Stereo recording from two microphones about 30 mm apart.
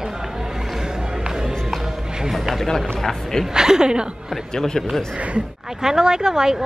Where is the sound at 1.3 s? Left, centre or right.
Centre.